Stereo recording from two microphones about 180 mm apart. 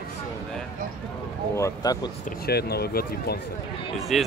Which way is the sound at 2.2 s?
60° left (ahead or behind).